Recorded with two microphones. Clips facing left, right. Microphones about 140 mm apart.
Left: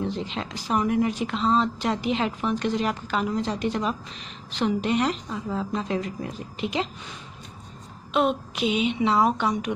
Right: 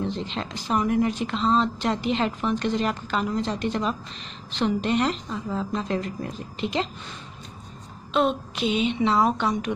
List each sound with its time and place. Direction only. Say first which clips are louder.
0.0 s speech: even; 5° left (ahead or behind)
8.1 s speech: even; 10° left (ahead or behind)